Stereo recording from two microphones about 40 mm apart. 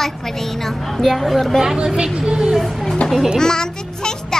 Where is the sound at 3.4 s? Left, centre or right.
Centre.